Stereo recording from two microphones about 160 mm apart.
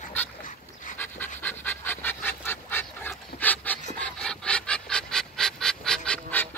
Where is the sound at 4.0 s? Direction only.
5° left (ahead or behind).